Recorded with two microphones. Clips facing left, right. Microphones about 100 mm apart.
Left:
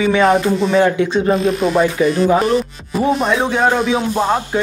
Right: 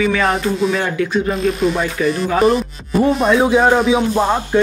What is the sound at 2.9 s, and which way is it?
Speech, 5° right (ahead or behind).